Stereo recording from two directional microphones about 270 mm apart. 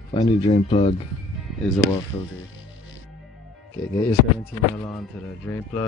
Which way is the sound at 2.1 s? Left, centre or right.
Centre.